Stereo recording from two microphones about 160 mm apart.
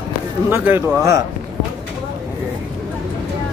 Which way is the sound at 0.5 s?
15° right (ahead or behind).